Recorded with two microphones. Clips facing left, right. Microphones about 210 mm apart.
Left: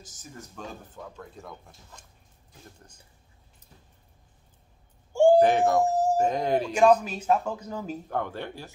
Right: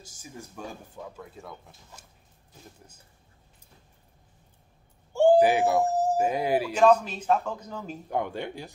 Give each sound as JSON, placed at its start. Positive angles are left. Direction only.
{"t": 0.0, "sound": "speech", "side_deg": -10}
{"t": 5.1, "sound": "a sound", "side_deg": 10}
{"t": 5.4, "sound": "speech", "side_deg": -5}
{"t": 5.9, "sound": "music", "side_deg": 10}
{"t": 6.1, "sound": "speech", "side_deg": -10}
{"t": 6.7, "sound": "speech", "side_deg": 10}
{"t": 8.1, "sound": "speech", "side_deg": -15}